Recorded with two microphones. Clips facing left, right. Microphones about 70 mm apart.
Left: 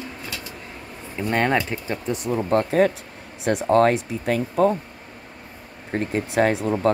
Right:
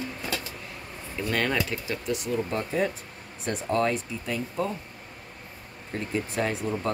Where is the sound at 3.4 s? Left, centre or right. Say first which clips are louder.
Left 9 dB; left.